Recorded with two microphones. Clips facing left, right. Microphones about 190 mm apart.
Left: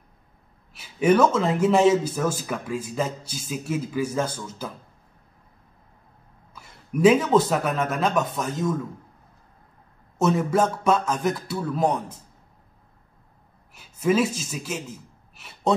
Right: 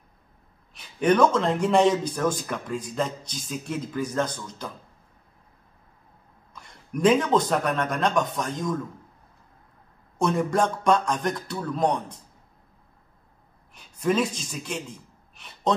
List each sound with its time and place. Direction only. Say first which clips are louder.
0.7 s a man's voice: left 1 dB; 5° left (ahead or behind)
6.5 s a man's voice: left 3 dB; 5° left (ahead or behind)
10.1 s speech: left 2 dB; 5° left (ahead or behind)
13.7 s speech: left 2 dB; 5° left (ahead or behind)